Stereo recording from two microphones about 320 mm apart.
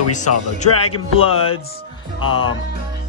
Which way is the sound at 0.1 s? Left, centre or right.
Left.